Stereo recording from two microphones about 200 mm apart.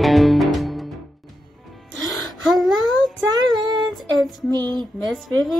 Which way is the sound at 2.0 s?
Centre (ahead or behind).